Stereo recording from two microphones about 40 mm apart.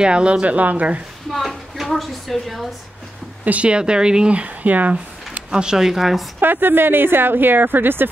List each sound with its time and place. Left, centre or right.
0.0 s speech: right
1.3 s a sound: centre
3.4 s speech: right
3.7 s speech: right
4.3 s speech: right
5.5 s speech: right
5.8 s a woman's voice: centre
6.4 s a woman's voice: right